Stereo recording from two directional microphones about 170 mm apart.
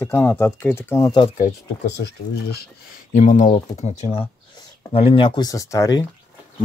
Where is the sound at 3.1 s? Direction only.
45° left (ahead or behind).